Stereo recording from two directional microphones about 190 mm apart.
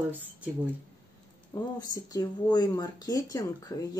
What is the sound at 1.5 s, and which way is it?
Speech, 15° left (ahead or behind).